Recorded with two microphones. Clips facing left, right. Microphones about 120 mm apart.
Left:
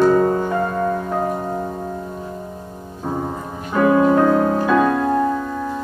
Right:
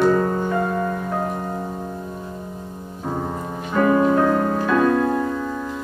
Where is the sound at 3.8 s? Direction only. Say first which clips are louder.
Left 2 dB; 10° left (ahead or behind).